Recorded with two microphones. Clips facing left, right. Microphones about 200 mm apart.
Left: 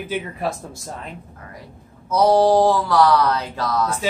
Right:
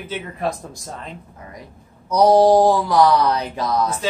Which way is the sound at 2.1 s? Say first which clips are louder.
Right 2 dB; 15° right (ahead or behind).